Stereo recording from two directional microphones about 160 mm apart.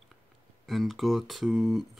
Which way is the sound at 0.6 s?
Centre (ahead or behind).